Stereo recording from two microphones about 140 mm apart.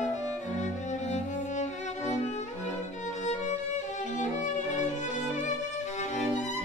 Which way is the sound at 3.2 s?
60° left (ahead or behind).